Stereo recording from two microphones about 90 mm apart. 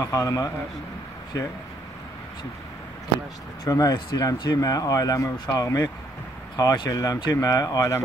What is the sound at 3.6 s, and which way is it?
A man's voice, 40° left (ahead or behind).